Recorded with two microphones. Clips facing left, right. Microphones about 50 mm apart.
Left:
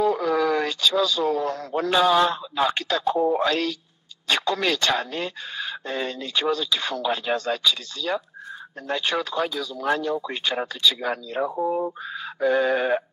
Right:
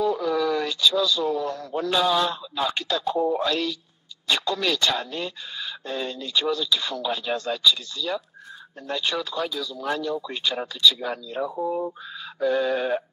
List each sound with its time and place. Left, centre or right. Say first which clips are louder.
0.0 s a sound: left 2 dB; left
1.7 s a man's voice: left 3 dB; left
11.0 s speech: left 3 dB; left
11.4 s a man's voice: left 2 dB; left